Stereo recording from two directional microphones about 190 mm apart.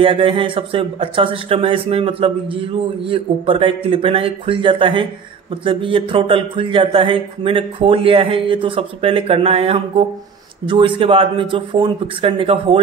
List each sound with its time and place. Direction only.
0.0 s speech: 30° right (ahead or behind)